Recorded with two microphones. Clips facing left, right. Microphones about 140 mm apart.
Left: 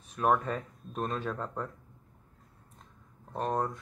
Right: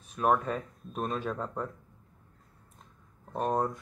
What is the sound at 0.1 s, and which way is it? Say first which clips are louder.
Speech: right 1 dB; 5° right (ahead or behind).